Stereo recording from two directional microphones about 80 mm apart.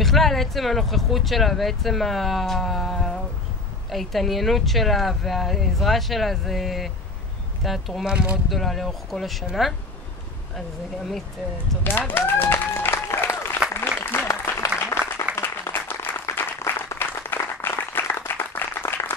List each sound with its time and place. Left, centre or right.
0.0 s speech: centre
8.1 s speech: centre
8.5 s speech: centre
12.1 s applause: left
14.9 s applause: left
15.3 s applause: left